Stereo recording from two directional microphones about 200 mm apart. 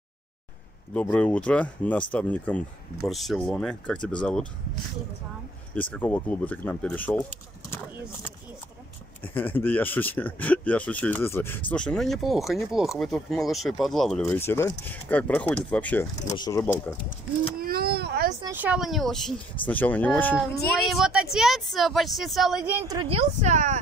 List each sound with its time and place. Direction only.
1.1 s speech: 5° left (ahead or behind)
5.8 s speech: 10° left (ahead or behind)
9.2 s speech: 10° left (ahead or behind)
17.6 s vehicle: 50° right (ahead or behind)
18.4 s speech: 10° right (ahead or behind); by 20.3 s 10° left (ahead or behind)
20.9 s speech: 5° right (ahead or behind)
23.0 s a woman's voice: 35° right (ahead or behind)